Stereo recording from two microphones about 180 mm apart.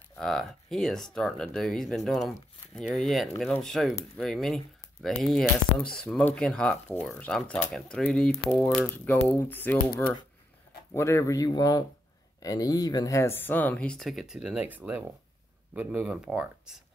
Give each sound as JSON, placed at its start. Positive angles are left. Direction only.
{"t": 0.2, "sound": "speech", "side_deg": 5}